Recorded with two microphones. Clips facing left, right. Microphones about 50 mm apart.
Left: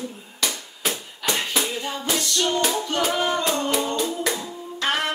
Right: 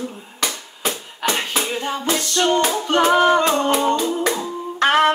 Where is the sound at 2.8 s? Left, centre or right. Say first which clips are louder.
Right 8 dB; right.